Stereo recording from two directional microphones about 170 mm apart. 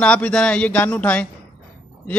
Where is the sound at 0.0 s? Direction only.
5° left (ahead or behind).